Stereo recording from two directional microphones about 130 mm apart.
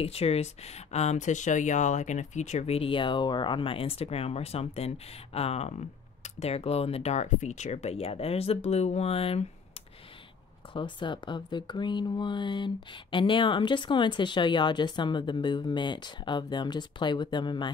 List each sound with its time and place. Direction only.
0.0 s speech: 50° left (ahead or behind)
10.7 s speech: 40° left (ahead or behind)